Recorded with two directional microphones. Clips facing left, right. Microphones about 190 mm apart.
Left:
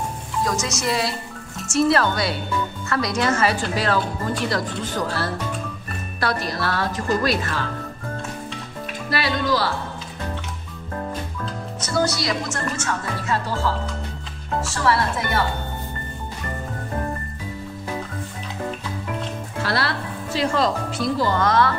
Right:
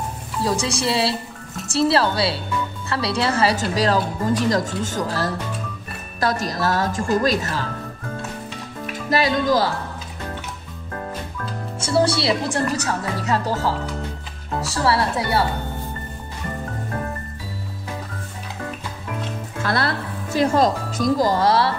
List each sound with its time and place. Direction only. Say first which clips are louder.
0.5 s speech: right 4 dB; 30° right (ahead or behind)
6.1 s music: right 2 dB; 45° right (ahead or behind)
9.1 s music: right 4 dB; 45° right (ahead or behind)
11.8 s speech: right 4 dB; 30° right (ahead or behind)
19.6 s music: right 2 dB; 50° right (ahead or behind)
20.3 s speech: right 4 dB; 45° right (ahead or behind)